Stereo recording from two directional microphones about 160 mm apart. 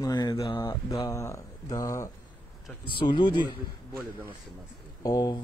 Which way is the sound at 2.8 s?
30° left (ahead or behind).